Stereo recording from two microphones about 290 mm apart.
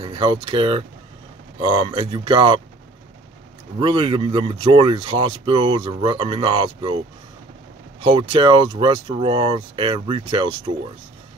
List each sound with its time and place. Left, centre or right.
0.0 s speech: centre
3.8 s speech: centre
8.0 s speech: centre